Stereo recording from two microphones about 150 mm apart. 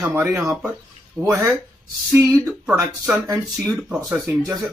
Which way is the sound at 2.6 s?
10° right (ahead or behind).